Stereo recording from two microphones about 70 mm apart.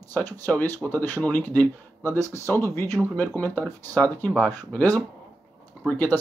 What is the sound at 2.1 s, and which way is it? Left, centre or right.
Speech, left.